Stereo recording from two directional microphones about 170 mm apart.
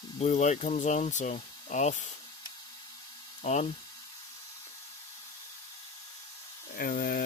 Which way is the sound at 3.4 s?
40° left (ahead or behind).